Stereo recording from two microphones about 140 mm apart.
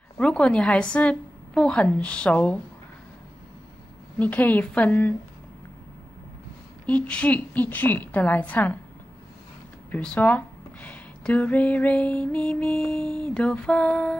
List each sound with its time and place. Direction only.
0.2 s speech: 5° left (ahead or behind)
4.2 s speech: 10° left (ahead or behind)
6.9 s speech: 10° left (ahead or behind)
9.8 s speech: 10° left (ahead or behind)